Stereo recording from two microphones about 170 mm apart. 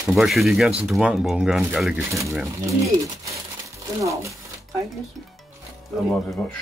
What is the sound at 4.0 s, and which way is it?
Speech, 20° right (ahead or behind).